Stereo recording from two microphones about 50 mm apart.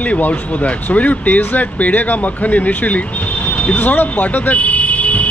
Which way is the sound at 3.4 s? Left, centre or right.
Left.